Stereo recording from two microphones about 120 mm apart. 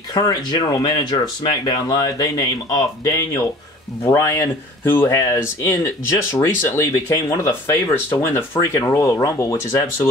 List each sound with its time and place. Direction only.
0.1 s speech: 30° left (ahead or behind)